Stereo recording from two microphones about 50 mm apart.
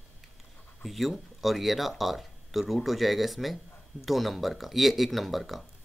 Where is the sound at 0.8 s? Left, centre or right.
Centre.